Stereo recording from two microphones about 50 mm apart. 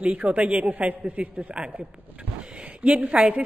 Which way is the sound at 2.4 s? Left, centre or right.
Right.